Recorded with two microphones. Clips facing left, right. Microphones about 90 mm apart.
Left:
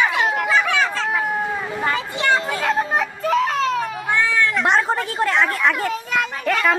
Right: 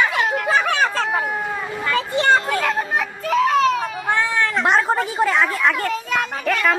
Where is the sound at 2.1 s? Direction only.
50° right (ahead or behind).